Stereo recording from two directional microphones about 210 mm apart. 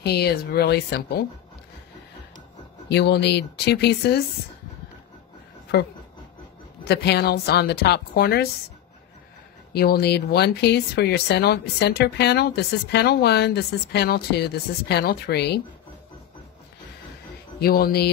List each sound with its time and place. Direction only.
0.0 s speech: 50° left (ahead or behind)
2.9 s speech: 55° left (ahead or behind)
6.9 s speech: 50° left (ahead or behind)
9.7 s speech: 50° left (ahead or behind)
17.6 s speech: 45° left (ahead or behind)